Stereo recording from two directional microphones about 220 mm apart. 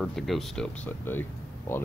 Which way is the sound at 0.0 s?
Centre (ahead or behind).